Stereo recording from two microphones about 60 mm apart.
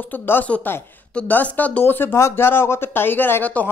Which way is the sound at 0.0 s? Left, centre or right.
Left.